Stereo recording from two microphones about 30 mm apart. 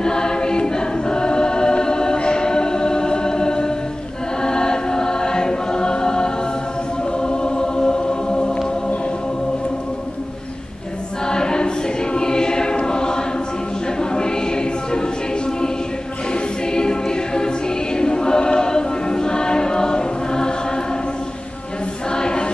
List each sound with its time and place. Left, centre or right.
0.0 s choir: left
11.2 s choir: left
22.1 s choir: left